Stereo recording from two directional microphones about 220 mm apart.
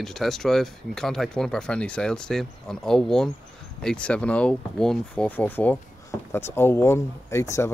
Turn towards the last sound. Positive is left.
turn(degrees=15)  # may be behind; listen again after turning